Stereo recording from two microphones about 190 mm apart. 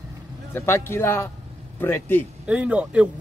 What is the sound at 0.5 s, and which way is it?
Speech, 15° left (ahead or behind).